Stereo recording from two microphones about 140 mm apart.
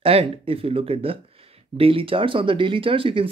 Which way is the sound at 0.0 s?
40° right (ahead or behind).